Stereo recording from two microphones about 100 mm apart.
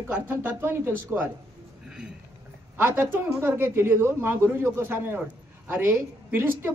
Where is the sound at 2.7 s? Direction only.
25° right (ahead or behind).